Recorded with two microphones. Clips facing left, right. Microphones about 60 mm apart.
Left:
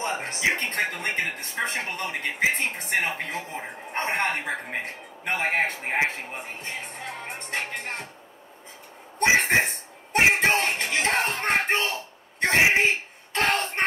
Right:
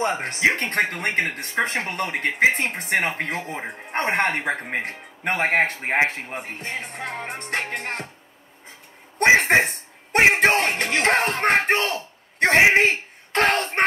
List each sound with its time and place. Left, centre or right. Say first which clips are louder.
0.2 s speech: right 4 dB; right
5.2 s speech: right 4 dB; right
9.2 s a sound: right 4 dB; right
10.7 s speech: right 5 dB; right